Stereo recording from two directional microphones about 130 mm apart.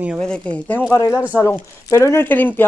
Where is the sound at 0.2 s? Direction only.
10° left (ahead or behind).